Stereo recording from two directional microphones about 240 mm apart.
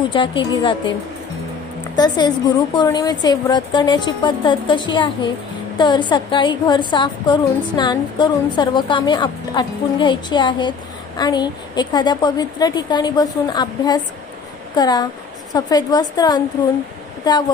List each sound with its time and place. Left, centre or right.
0.1 s a woman's voice: left
2.0 s a woman's voice: centre